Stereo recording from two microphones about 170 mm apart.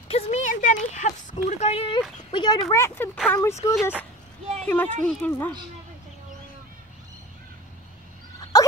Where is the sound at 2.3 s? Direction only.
25° left (ahead or behind).